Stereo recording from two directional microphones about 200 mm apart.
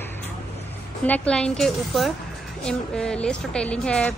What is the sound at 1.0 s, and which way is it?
A woman's voice, 5° left (ahead or behind).